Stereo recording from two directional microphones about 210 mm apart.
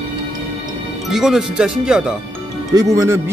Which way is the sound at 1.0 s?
Centre (ahead or behind).